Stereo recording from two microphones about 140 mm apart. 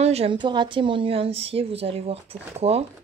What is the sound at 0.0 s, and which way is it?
A woman's voice, 45° right (ahead or behind).